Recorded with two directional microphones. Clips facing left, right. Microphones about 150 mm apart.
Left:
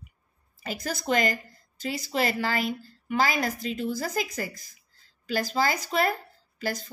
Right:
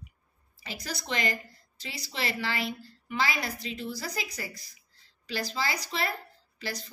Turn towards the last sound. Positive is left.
turn(degrees=50)  # may be behind; listen again after turning